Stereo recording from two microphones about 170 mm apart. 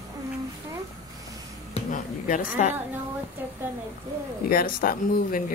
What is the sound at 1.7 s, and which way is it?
Speech, 50° left (ahead or behind).